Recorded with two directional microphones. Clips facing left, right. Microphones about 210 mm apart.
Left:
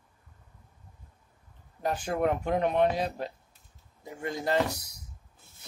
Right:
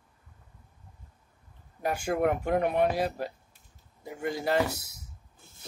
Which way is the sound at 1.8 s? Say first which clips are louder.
Right 1 dB; 10° right (ahead or behind).